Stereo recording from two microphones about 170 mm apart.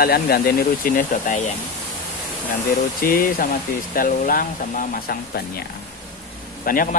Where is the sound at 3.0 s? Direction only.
60° left (ahead or behind).